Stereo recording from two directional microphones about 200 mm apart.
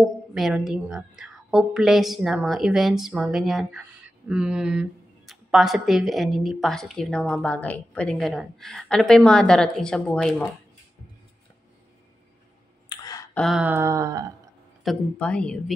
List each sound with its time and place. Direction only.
0.0 s speech: centre (ahead or behind)
12.8 s clicking: 20° left (ahead or behind)
13.3 s a sound: centre (ahead or behind); by 14.3 s 15° right (ahead or behind)
14.8 s speech: 5° left (ahead or behind)